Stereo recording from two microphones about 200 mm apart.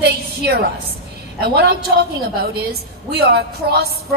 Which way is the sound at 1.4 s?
50° right (ahead or behind).